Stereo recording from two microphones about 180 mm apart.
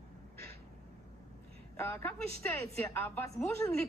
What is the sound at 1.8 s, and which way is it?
Speech, 15° left (ahead or behind).